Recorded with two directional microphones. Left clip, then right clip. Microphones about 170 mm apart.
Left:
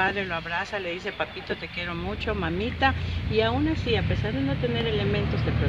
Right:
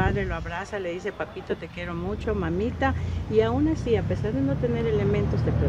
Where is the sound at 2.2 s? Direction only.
15° right (ahead or behind).